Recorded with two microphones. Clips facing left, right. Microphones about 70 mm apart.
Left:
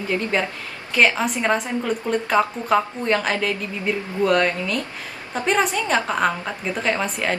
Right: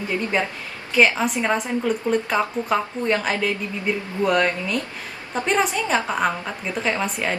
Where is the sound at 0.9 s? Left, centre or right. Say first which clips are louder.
Right 1 dB; centre.